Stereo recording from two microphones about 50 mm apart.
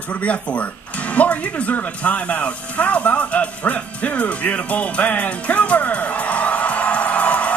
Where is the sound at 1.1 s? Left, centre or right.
Left.